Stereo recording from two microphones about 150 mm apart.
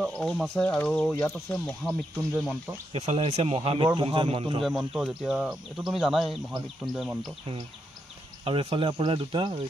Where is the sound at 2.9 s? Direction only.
50° right (ahead or behind).